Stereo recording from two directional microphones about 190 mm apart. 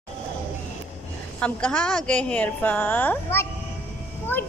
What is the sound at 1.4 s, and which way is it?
A woman's voice, 5° left (ahead or behind).